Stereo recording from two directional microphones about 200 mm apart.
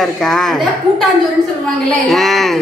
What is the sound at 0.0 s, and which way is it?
A woman's voice, centre (ahead or behind).